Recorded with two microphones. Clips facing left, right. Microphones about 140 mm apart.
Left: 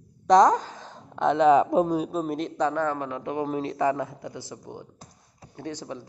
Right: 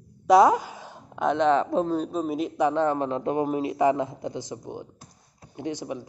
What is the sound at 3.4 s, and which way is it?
A man's voice, 10° right (ahead or behind).